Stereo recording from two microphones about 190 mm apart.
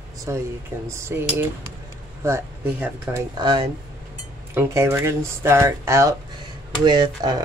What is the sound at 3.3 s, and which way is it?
Speech, 20° right (ahead or behind).